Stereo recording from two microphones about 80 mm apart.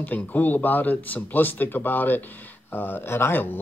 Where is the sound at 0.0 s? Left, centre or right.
Left.